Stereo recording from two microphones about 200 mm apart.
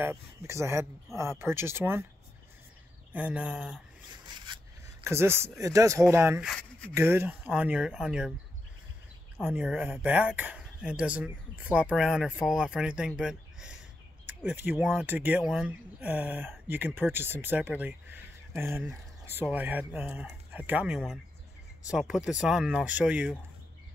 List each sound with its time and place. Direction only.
0.0 s speech: 15° right (ahead or behind)
3.1 s speech: 5° right (ahead or behind)
4.1 s rub: 20° right (ahead or behind)
5.0 s speech: 10° right (ahead or behind)
6.4 s a sound: 5° left (ahead or behind)
6.9 s speech: 10° right (ahead or behind)
9.5 s speech: 5° right (ahead or behind)